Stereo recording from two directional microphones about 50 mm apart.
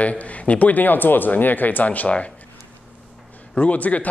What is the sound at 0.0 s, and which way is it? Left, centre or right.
Speech, left.